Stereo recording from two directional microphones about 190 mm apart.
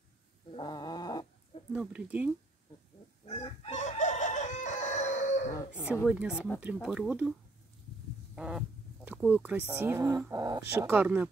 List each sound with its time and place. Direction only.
0.5 s a sound: 25° left (ahead or behind)
1.7 s speech: 5° right (ahead or behind)
3.3 s chicken: 30° left (ahead or behind)
6.0 s speech: 5° right (ahead or behind)
8.4 s speech: 5° right (ahead or behind)